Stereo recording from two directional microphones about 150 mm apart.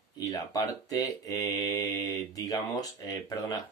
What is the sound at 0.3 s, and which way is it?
Speech, 25° left (ahead or behind).